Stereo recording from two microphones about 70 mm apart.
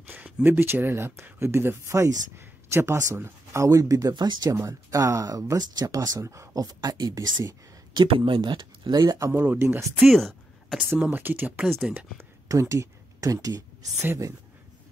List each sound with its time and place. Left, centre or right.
0.0 s speech: right
3.2 s speech: right
3.6 s speech: right
4.6 s speech: right
6.5 s speech: right
7.9 s speech: right
9.4 s speech: right
9.9 s a sound: centre
11.0 s speech: right
12.4 s speech: right